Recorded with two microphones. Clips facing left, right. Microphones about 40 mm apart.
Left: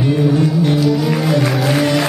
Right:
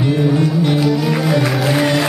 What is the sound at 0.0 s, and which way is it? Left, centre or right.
Music, centre.